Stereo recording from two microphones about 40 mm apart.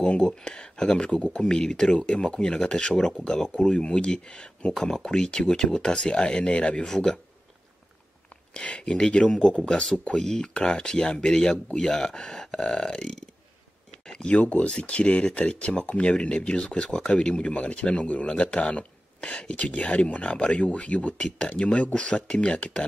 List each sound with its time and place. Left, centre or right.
0.0 s speech: left
4.7 s speech: centre; by 6.9 s left
6.9 s speech: centre
8.5 s speech: left
14.0 s a sound: centre
14.3 s speech: left